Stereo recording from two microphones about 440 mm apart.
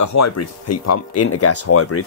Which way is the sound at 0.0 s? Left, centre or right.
Left.